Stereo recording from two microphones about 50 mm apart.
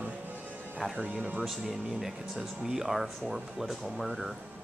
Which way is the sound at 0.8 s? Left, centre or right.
Centre.